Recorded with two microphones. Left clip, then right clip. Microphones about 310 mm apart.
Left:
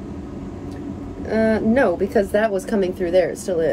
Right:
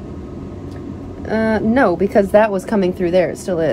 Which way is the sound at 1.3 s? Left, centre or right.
Right.